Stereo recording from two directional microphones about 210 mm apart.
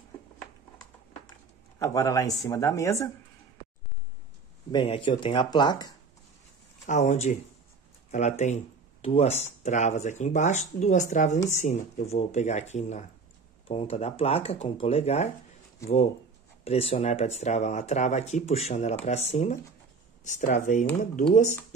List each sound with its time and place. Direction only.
1.8 s speech: 15° left (ahead or behind)
4.6 s speech: 25° left (ahead or behind)
6.9 s speech: 35° left (ahead or behind)
16.6 s speech: 30° left (ahead or behind)